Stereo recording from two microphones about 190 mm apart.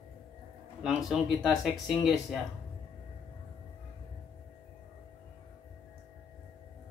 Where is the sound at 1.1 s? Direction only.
Centre (ahead or behind).